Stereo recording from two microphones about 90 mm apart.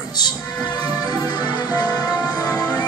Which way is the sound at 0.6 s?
55° left (ahead or behind).